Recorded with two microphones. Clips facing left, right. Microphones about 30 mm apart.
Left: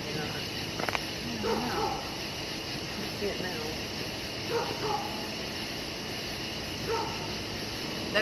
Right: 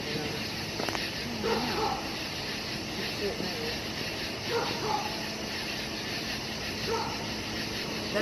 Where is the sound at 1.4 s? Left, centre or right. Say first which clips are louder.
Right 1 dB; right.